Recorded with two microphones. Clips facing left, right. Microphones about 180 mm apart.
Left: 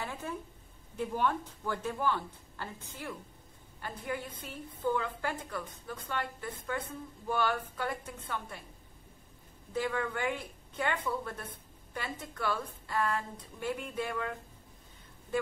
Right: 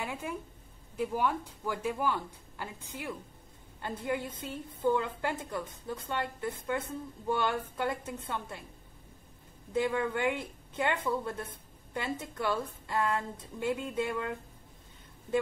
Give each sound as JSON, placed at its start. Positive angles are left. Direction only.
{"t": 0.0, "sound": "a woman's voice", "side_deg": -15}
{"t": 9.8, "sound": "a woman's voice", "side_deg": -25}